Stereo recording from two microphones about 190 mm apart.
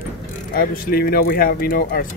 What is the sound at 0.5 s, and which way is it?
Speech, 50° left (ahead or behind).